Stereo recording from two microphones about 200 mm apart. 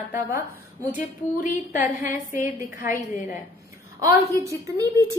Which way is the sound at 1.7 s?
40° left (ahead or behind).